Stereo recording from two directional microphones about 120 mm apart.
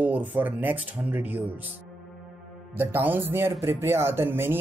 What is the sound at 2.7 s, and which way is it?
Speech, 15° right (ahead or behind).